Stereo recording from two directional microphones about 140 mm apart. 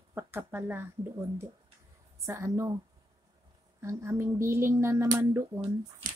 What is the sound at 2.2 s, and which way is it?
Speech, 20° right (ahead or behind).